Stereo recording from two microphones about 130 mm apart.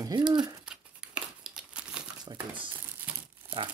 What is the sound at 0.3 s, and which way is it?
Speech, 30° right (ahead or behind).